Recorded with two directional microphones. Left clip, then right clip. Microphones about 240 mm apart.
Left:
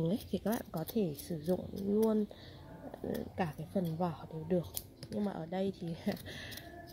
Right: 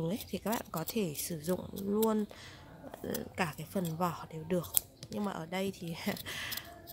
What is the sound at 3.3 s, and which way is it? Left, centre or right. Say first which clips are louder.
Speech: right 3 dB; centre.